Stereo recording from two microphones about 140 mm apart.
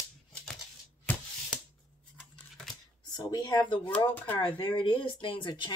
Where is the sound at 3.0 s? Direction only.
30° left (ahead or behind).